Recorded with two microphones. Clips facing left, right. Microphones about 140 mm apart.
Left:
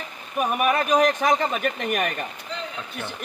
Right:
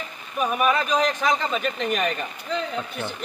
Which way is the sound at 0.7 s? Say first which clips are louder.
Left 4 dB; 55° left (ahead or behind).